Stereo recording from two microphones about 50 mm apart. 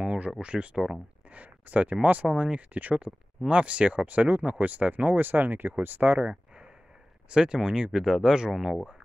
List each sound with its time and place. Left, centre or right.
0.0 s a sound: right
0.4 s speech: right
1.3 s speech: right
2.2 s speech: right
7.2 s speech: centre